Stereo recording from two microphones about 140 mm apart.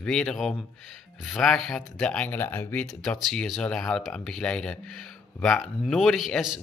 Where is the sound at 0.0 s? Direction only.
5° left (ahead or behind).